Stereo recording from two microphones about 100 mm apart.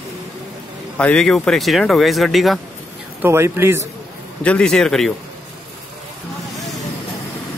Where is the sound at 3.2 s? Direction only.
25° right (ahead or behind).